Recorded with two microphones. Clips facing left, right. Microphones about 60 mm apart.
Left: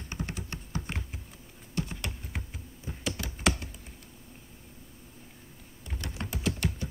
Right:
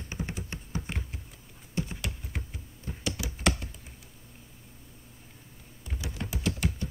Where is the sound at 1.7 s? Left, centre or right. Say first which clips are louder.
Right 1 dB; right.